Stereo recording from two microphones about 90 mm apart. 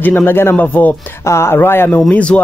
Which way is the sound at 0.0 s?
25° left (ahead or behind).